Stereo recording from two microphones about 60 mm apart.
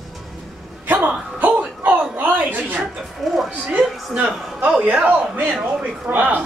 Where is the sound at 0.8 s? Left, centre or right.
Right.